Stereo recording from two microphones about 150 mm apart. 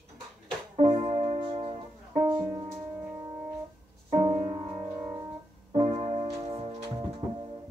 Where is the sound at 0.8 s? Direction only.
50° right (ahead or behind).